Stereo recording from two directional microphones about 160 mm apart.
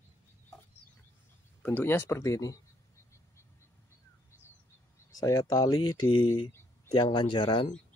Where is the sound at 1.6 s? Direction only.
10° left (ahead or behind).